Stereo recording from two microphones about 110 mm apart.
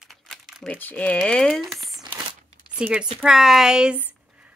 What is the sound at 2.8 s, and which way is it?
Speech, 10° right (ahead or behind).